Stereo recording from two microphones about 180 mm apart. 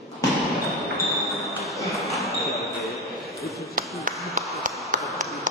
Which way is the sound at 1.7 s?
Centre (ahead or behind).